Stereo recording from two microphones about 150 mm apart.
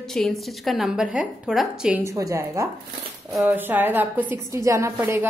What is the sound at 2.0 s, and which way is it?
A woman's voice, 20° right (ahead or behind).